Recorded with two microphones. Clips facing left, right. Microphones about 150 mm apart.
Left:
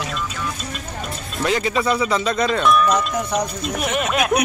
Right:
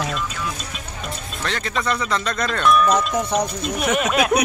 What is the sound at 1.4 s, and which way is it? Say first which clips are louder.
Speech: left 5 dB; 5° left (ahead or behind).